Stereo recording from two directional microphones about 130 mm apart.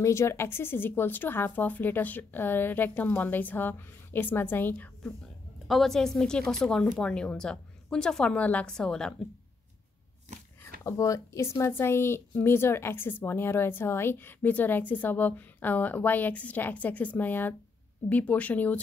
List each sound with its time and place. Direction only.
0.0 s speech: 20° left (ahead or behind)
5.7 s speech: centre (ahead or behind)
10.8 s speech: 25° left (ahead or behind)